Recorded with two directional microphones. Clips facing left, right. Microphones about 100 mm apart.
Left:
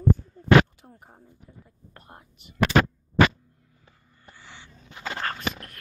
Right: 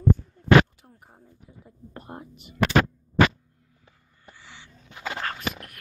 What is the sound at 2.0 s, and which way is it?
Speech, 15° right (ahead or behind).